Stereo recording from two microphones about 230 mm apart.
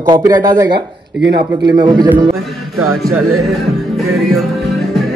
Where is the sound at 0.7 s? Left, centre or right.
Right.